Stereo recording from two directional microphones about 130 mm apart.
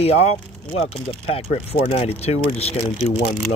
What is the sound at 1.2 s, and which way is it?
Speech, 50° left (ahead or behind).